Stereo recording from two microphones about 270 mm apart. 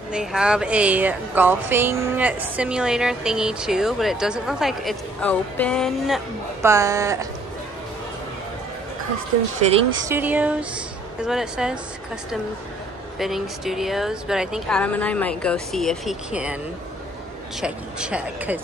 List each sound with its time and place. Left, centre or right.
0.1 s speech: centre
10.0 s speech: centre
13.2 s speech: centre
17.6 s speech: centre